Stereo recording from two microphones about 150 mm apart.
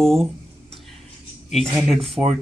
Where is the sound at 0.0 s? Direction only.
Centre (ahead or behind).